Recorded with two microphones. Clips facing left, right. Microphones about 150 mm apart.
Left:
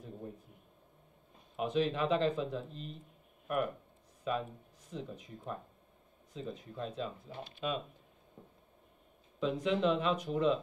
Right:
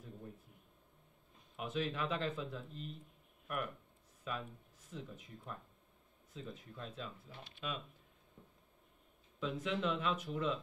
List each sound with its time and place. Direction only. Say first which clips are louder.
0.0 s a sound: left 6 dB; 30° left (ahead or behind)
1.6 s speech: left 7 dB; 30° left (ahead or behind)
3.4 s a sound: left 8 dB; 30° left (ahead or behind)
4.9 s speech: left 6 dB; 30° left (ahead or behind)
6.7 s speech: left 8 dB; 30° left (ahead or behind)
9.7 s speech: left 6 dB; 25° left (ahead or behind)